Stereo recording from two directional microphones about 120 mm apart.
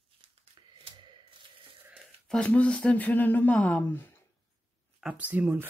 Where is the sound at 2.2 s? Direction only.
10° left (ahead or behind).